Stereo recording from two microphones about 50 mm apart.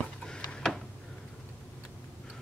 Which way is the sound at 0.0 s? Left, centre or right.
Centre.